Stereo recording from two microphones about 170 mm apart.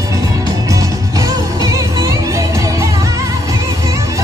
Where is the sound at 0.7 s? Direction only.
20° right (ahead or behind).